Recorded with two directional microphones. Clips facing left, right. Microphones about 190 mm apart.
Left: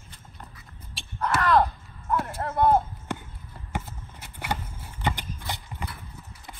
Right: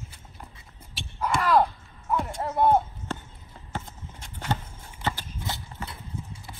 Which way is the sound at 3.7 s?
10° left (ahead or behind).